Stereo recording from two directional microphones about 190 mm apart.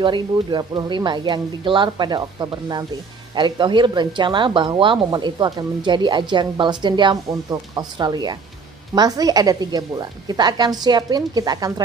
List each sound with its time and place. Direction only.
0.0 s speech: 25° right (ahead or behind)